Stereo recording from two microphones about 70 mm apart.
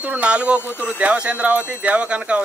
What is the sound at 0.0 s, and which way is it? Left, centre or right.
Speech, centre.